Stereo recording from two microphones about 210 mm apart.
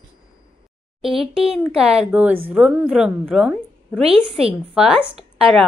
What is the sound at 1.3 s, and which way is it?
A woman's voice, 5° right (ahead or behind).